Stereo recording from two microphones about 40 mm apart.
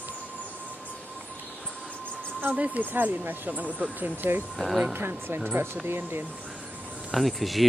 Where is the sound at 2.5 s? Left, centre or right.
Right.